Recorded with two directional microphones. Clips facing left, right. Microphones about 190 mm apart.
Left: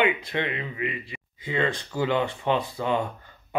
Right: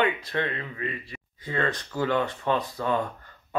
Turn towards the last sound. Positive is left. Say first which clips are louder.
# left 1 dB
turn(degrees=15)  # may be behind; listen again after turning